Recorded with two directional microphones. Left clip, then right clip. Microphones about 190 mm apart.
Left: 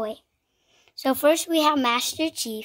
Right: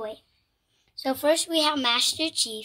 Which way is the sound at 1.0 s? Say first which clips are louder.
Left 3 dB; 55° left (ahead or behind).